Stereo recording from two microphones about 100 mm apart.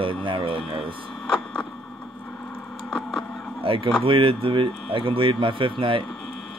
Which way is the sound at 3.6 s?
65° right (ahead or behind).